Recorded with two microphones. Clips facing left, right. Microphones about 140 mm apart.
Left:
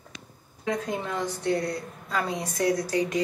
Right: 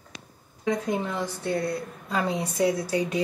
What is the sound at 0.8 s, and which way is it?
A woman's voice, 10° right (ahead or behind).